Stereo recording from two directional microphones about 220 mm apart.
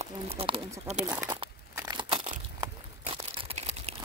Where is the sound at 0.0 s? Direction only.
25° right (ahead or behind).